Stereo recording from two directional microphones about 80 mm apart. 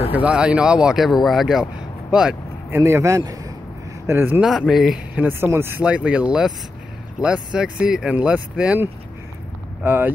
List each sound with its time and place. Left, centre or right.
0.1 s speech: centre
2.7 s a man's voice: right
3.2 s a man's voice: right
4.1 s speech: right
4.4 s speech: centre
5.4 s a man's voice: right
5.8 s speech: centre
9.8 s speech: right